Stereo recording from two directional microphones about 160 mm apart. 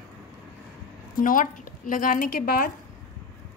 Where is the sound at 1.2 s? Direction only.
55° left (ahead or behind).